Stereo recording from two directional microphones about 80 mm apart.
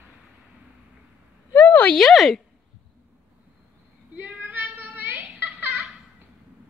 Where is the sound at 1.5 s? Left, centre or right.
Left.